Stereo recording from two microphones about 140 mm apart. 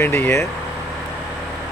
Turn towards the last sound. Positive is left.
turn(degrees=15)  # may be behind; listen again after turning